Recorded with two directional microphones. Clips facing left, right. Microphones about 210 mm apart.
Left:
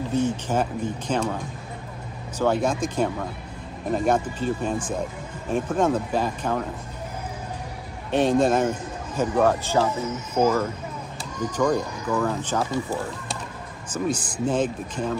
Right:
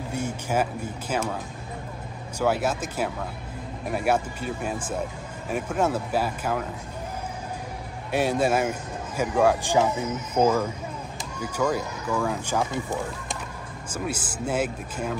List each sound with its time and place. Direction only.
0.1 s a man's voice: 10° right (ahead or behind)
8.1 s a man's voice: 10° right (ahead or behind)